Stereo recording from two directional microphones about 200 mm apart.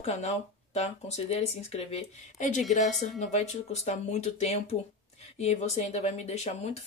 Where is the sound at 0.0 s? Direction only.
30° left (ahead or behind).